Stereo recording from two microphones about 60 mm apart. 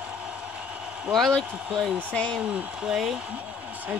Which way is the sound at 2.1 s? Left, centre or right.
Centre.